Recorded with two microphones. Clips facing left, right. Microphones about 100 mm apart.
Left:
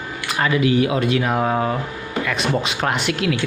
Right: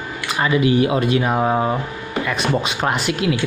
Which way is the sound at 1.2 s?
10° right (ahead or behind).